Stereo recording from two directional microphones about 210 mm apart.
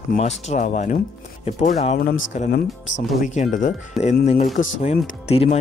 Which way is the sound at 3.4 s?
35° left (ahead or behind).